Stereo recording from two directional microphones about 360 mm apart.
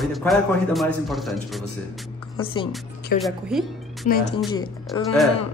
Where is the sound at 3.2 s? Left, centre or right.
Centre.